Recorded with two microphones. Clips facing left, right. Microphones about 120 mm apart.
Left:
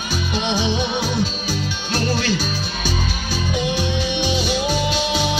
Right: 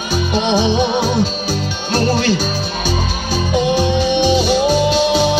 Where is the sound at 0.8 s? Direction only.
45° right (ahead or behind).